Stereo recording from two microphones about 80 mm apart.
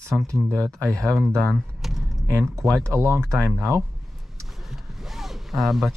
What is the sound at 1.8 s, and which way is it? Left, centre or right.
Typing, centre.